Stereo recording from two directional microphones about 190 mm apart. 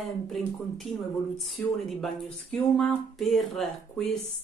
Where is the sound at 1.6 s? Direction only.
5° left (ahead or behind).